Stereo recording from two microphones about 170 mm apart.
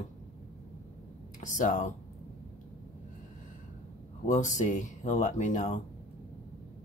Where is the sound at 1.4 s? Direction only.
45° left (ahead or behind).